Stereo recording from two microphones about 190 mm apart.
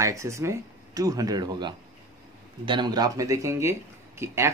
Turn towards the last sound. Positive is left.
turn(degrees=-15)  # may be behind; listen again after turning